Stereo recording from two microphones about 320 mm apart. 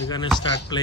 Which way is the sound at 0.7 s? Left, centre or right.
Centre.